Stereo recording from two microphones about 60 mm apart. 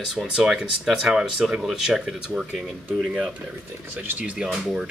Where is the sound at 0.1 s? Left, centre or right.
Centre.